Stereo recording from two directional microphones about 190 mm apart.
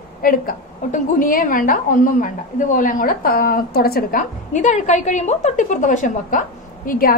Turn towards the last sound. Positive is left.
turn(degrees=50)  # may be behind; listen again after turning